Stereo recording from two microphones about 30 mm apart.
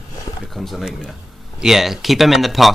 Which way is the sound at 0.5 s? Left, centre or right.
Centre.